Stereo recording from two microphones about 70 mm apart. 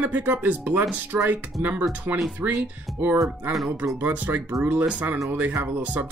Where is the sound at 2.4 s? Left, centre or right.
Right.